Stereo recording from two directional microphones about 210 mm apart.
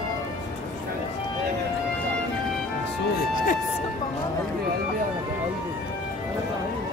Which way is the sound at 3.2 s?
40° left (ahead or behind).